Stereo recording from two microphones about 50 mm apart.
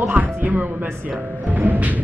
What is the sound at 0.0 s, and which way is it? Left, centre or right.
Music, right.